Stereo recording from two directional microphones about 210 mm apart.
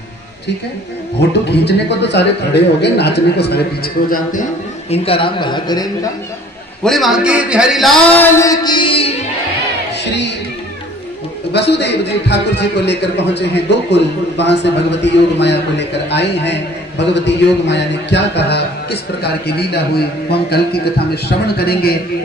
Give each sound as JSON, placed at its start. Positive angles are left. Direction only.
{"t": 1.5, "sound": "a man's voice", "side_deg": 50}
{"t": 4.1, "sound": "speech", "side_deg": 40}
{"t": 4.9, "sound": "speech", "side_deg": 25}
{"t": 6.8, "sound": "a man's voice", "side_deg": 0}
{"t": 11.5, "sound": "a man's voice", "side_deg": 55}